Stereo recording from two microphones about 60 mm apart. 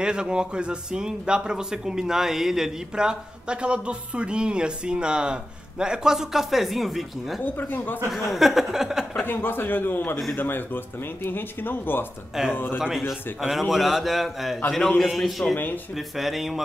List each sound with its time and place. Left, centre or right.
0.0 s speech: centre
7.4 s a man's voice: left
8.1 s a man's voice: centre
9.2 s a man's voice: left
13.4 s a man's voice: centre
14.8 s a man's voice: centre
15.0 s a man's voice: centre
15.5 s a man's voice: left
16.2 s a man's voice: centre